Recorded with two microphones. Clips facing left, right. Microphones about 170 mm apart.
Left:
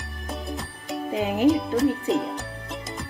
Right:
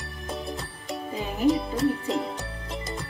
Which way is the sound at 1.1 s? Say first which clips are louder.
Left 9 dB; 75° left (ahead or behind).